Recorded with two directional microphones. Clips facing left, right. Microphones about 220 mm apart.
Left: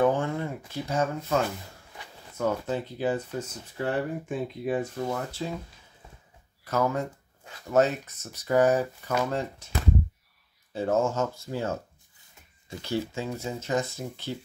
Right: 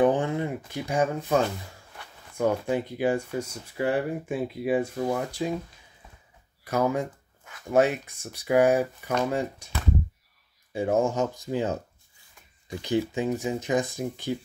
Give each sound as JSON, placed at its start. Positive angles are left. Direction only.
{"t": 0.0, "sound": "a sound", "side_deg": -15}
{"t": 2.3, "sound": "speech", "side_deg": -15}
{"t": 6.6, "sound": "speech", "side_deg": -15}
{"t": 10.7, "sound": "speech", "side_deg": -15}